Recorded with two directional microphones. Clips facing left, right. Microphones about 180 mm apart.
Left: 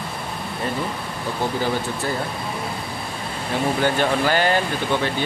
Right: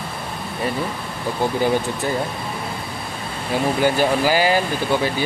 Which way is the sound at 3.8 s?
10° right (ahead or behind).